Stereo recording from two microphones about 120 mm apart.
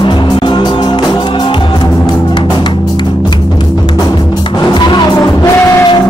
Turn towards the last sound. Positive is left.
turn(degrees=25)  # may be behind; listen again after turning